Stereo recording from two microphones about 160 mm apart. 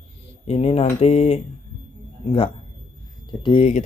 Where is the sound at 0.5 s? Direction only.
40° left (ahead or behind).